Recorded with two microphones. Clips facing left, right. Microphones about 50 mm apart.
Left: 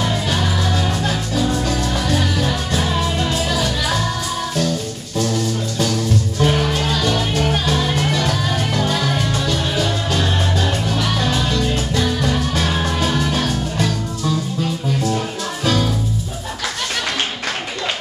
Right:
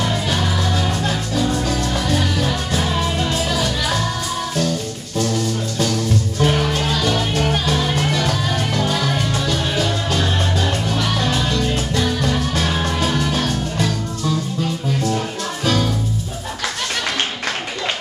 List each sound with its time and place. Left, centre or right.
0.0 s music: centre
6.4 s music: centre